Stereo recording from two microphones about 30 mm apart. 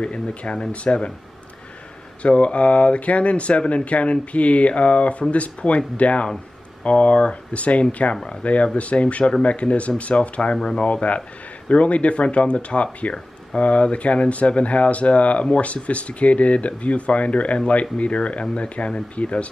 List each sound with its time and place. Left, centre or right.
0.0 s speech: left
2.2 s speech: left
8.2 s speech: left
8.7 s speech: left